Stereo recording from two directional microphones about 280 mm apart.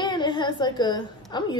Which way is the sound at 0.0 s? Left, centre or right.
Centre.